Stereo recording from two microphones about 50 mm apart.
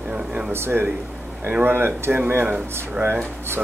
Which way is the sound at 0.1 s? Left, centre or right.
Centre.